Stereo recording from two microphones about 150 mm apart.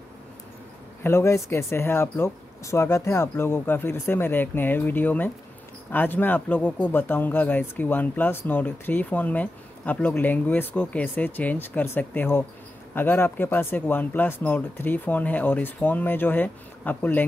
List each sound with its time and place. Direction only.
1.0 s speech: 15° left (ahead or behind)